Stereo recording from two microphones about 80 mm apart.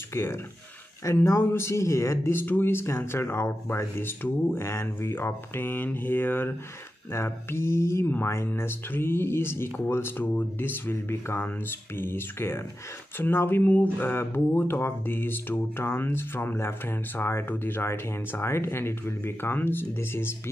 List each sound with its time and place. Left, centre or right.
0.1 s speech: left